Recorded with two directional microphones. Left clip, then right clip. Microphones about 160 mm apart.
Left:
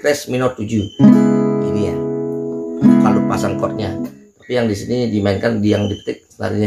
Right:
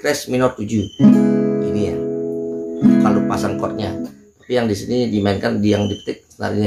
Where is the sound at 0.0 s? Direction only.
5° left (ahead or behind).